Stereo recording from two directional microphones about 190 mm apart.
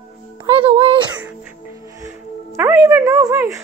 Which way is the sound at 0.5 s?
30° right (ahead or behind).